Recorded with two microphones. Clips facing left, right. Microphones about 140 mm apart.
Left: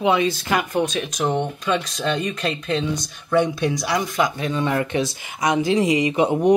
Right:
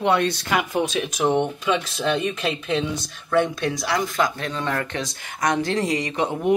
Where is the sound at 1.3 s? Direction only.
15° right (ahead or behind); by 6.5 s 15° left (ahead or behind).